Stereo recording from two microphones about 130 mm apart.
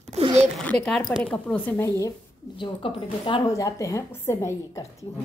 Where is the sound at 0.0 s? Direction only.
55° right (ahead or behind).